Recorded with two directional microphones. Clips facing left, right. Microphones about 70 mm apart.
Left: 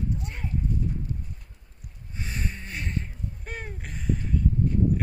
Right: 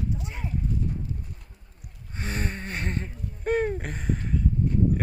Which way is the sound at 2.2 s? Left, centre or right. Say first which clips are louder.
Right 4 dB; right.